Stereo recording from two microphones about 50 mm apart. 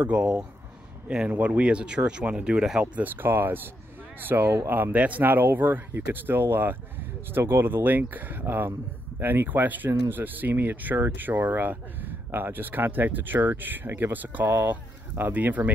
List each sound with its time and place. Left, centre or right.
0.0 s speech: right
2.8 s speech: right
4.9 s speech: right
12.3 s speech: right